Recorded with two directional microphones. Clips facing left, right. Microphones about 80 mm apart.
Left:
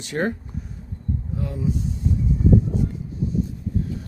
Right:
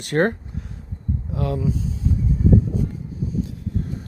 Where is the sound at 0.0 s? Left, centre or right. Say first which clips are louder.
Right 5 dB; right.